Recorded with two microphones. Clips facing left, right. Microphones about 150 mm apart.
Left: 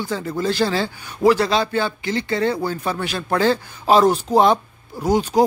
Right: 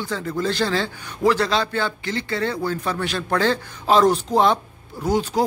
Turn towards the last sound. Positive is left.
turn(degrees=15)  # may be behind; listen again after turning